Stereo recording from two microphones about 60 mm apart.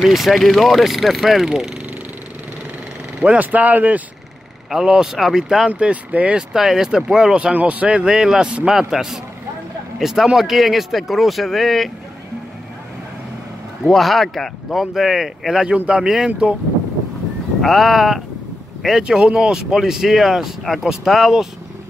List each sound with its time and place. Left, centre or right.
0.0 s speech: centre
3.2 s speech: right
4.6 s speech: centre
5.7 s speech: right
6.5 s speech: centre
7.5 s speech: right; by 11.9 s centre
13.8 s speech: centre
17.6 s speech: centre
19.0 s speech: centre